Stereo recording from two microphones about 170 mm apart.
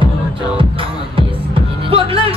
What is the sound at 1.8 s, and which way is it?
Music, 35° right (ahead or behind).